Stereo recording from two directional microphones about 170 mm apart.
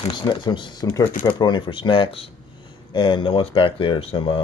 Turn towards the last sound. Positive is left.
turn(degrees=30)  # may be behind; listen again after turning